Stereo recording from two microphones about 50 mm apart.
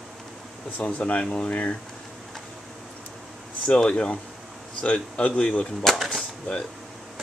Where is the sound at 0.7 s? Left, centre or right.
Left.